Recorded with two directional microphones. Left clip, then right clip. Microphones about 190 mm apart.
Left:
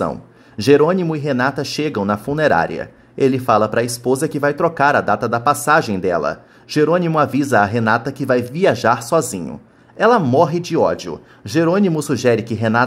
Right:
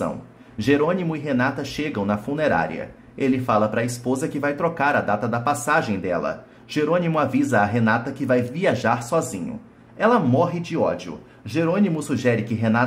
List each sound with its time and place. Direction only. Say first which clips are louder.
0.6 s speech: left 7 dB; 35° left (ahead or behind)